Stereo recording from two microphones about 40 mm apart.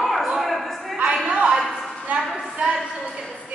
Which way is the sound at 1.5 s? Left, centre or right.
Centre.